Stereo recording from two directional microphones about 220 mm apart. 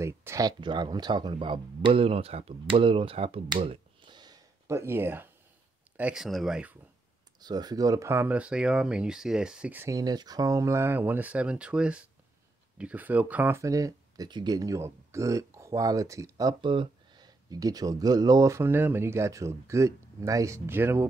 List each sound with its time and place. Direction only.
0.0 s speech: 15° right (ahead or behind)
7.3 s speech: 20° right (ahead or behind)